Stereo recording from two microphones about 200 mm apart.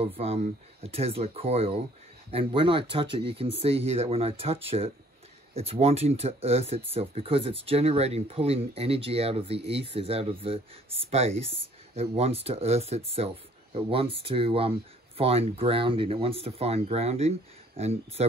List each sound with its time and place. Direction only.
0.0 s speech: 30° right (ahead or behind)